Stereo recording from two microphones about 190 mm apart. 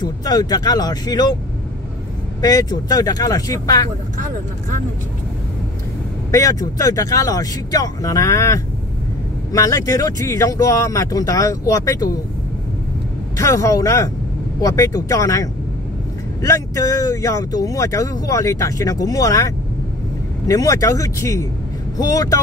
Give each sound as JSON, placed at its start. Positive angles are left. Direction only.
{"t": 0.0, "sound": "speech", "side_deg": 20}
{"t": 2.4, "sound": "speech", "side_deg": 20}
{"t": 6.3, "sound": "speech", "side_deg": 15}
{"t": 13.4, "sound": "speech", "side_deg": 15}